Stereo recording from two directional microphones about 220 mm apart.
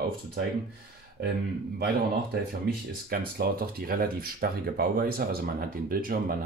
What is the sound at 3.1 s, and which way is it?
Speech, 45° right (ahead or behind).